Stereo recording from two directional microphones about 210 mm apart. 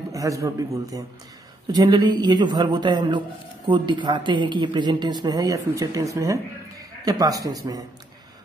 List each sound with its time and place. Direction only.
0.1 s a man's voice: 15° right (ahead or behind)